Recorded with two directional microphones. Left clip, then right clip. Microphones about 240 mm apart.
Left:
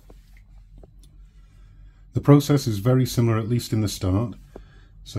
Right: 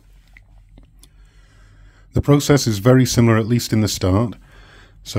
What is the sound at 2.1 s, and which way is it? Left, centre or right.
Speech, right.